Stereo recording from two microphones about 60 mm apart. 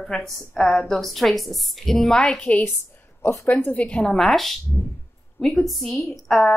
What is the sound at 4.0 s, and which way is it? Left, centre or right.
Speech, centre.